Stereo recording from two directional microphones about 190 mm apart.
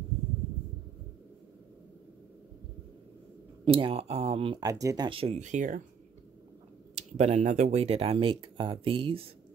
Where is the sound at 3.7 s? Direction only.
25° right (ahead or behind).